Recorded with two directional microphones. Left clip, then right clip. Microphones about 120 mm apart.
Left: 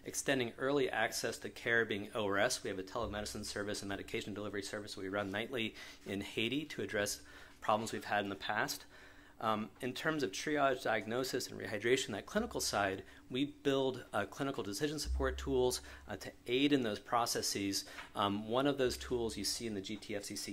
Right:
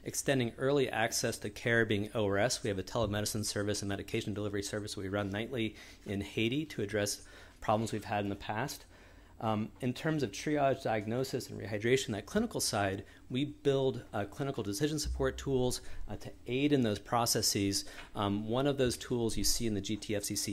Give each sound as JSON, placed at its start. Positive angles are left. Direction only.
{"t": 0.0, "sound": "speech", "side_deg": -50}
{"t": 2.2, "sound": "speech", "side_deg": -50}
{"t": 3.3, "sound": "speech", "side_deg": -90}
{"t": 3.6, "sound": "speech", "side_deg": -45}
{"t": 5.5, "sound": "speech", "side_deg": -15}
{"t": 7.6, "sound": "speech", "side_deg": -70}
{"t": 9.4, "sound": "speech", "side_deg": -85}
{"t": 11.1, "sound": "speech", "side_deg": -30}
{"t": 14.6, "sound": "speech", "side_deg": -30}
{"t": 16.8, "sound": "speech", "side_deg": -70}
{"t": 18.1, "sound": "speech", "side_deg": -20}